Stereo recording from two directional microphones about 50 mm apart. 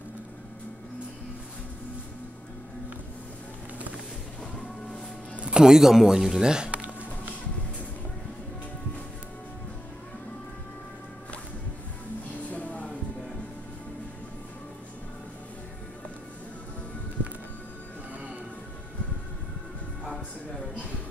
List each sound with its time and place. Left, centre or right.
5.4 s speech: centre
12.4 s music: left